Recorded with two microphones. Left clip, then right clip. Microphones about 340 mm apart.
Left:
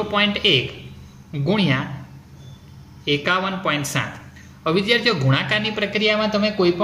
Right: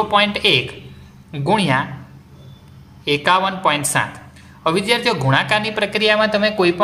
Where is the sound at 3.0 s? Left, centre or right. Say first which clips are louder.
Right 5 dB; centre.